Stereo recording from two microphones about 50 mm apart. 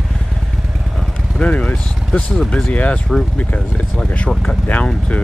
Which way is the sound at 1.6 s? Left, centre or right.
Centre.